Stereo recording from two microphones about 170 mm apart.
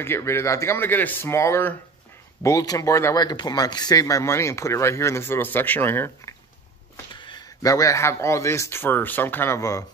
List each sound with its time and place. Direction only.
0.0 s speech: 15° left (ahead or behind)
7.2 s speech: 25° left (ahead or behind)